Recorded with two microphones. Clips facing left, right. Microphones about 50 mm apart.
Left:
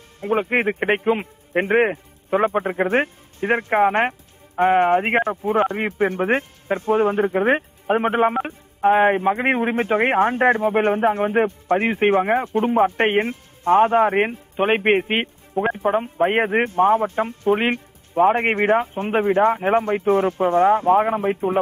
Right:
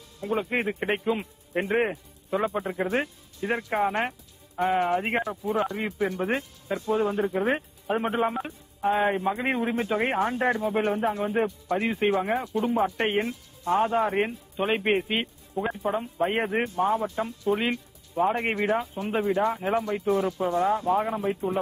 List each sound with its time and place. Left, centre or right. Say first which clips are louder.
0.2 s speech: left 7 dB; left